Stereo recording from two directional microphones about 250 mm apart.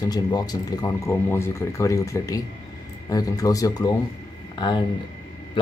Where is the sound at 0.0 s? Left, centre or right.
Centre.